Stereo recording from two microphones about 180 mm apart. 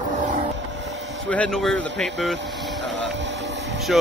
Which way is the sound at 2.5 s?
Centre (ahead or behind).